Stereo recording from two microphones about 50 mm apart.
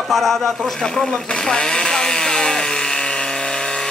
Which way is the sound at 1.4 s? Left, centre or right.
Centre.